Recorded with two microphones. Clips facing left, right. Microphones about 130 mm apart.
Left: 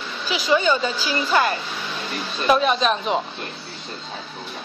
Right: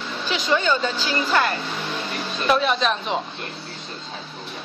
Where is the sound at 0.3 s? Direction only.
5° left (ahead or behind).